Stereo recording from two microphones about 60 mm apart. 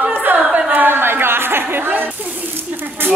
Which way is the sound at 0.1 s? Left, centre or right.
Right.